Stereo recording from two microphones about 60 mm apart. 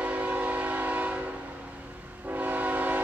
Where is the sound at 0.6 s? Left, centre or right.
Right.